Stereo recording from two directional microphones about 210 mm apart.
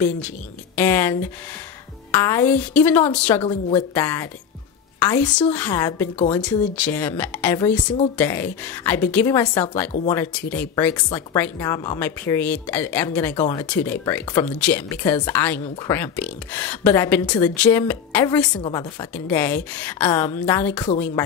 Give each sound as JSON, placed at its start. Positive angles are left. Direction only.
{"t": 0.7, "sound": "speech", "side_deg": 10}
{"t": 6.1, "sound": "speech", "side_deg": 30}
{"t": 6.4, "sound": "speech", "side_deg": 5}
{"t": 18.6, "sound": "speech", "side_deg": 20}
{"t": 19.1, "sound": "speech", "side_deg": 10}